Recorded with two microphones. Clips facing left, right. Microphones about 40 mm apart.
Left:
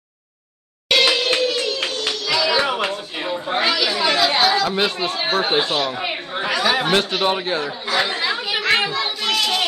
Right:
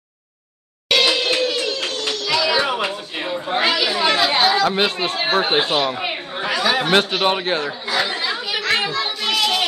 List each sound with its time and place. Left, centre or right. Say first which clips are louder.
0.8 s music: even; centre
1.9 s a sound: even; centre
2.4 s music: left 1 dB; centre
3.5 s chatter: right 1 dB; centre
4.3 s speech: right 1 dB; right
6.4 s chatter: even; centre
6.9 s speech: right 2 dB; right
8.0 s children playing: left 1 dB; centre
9.2 s a sound: right 1 dB; centre